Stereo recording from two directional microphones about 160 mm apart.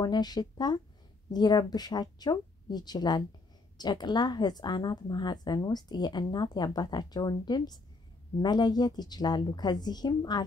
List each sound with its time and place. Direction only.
0.0 s speech: 25° left (ahead or behind)